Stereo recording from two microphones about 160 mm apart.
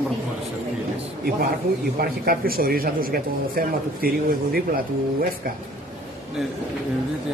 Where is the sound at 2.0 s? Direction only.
70° right (ahead or behind).